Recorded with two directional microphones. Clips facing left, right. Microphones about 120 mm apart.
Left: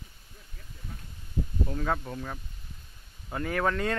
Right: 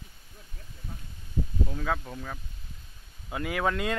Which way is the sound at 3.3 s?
10° right (ahead or behind).